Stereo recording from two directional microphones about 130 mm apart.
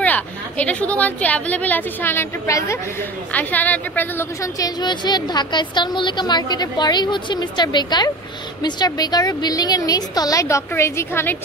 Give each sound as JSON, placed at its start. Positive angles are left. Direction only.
{"t": 0.0, "sound": "a woman's voice", "side_deg": 10}
{"t": 3.3, "sound": "a woman's voice", "side_deg": 10}